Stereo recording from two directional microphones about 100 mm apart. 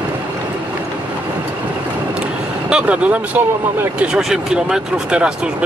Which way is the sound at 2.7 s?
10° right (ahead or behind).